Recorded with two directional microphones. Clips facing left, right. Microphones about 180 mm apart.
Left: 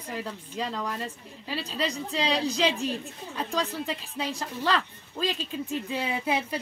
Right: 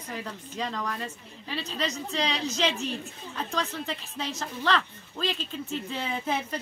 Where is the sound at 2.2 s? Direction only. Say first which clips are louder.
Left 3 dB; 35° left (ahead or behind).